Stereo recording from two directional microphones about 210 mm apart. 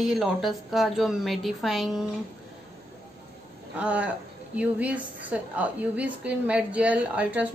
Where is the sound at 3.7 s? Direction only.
5° right (ahead or behind).